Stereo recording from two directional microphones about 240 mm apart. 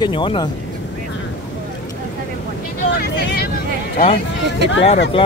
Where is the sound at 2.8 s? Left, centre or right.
Left.